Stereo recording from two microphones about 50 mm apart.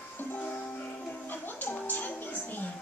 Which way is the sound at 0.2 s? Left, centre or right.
Left.